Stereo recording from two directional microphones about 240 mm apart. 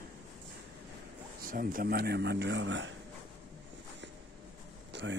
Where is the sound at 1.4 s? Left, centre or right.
Right.